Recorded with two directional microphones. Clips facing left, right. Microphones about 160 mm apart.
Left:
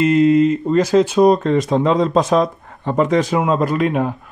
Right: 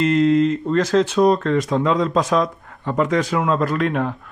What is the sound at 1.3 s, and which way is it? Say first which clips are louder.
Speech: left 3 dB; 20° left (ahead or behind).